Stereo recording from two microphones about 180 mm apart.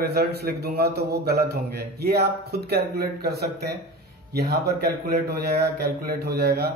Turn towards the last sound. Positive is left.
turn(degrees=-60)  # may be behind; listen again after turning